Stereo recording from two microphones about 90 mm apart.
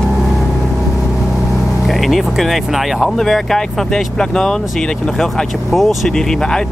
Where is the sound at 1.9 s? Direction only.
Centre (ahead or behind).